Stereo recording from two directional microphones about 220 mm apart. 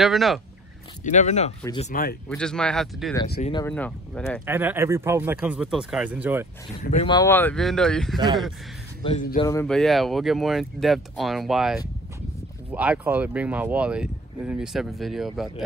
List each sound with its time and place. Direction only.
0.0 s speech: centre (ahead or behind)
1.0 s speech: 30° left (ahead or behind)
2.2 s speech: 5° left (ahead or behind)
4.5 s speech: 10° right (ahead or behind)
6.8 s speech: 35° left (ahead or behind)
7.1 s speech: 15° left (ahead or behind)
9.0 s speech: 35° left (ahead or behind)
9.4 s speech: 15° left (ahead or behind)
9.7 s speech: centre (ahead or behind)